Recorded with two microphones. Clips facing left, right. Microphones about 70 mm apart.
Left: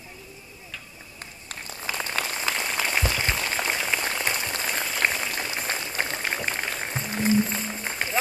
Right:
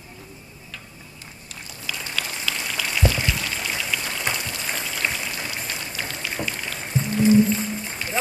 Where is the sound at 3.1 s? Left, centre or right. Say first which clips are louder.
Even; left.